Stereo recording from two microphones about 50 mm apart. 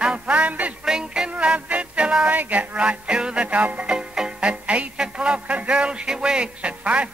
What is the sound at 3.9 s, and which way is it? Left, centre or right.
Music, centre.